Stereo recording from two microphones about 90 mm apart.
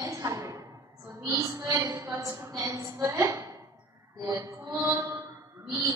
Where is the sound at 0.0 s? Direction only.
35° right (ahead or behind).